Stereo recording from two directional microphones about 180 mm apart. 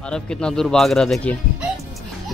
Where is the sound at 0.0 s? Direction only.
5° left (ahead or behind).